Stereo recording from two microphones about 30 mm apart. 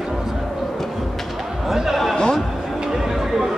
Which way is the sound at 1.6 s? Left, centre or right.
Centre.